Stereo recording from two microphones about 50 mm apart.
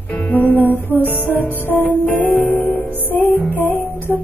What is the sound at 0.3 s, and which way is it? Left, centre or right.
Music, left.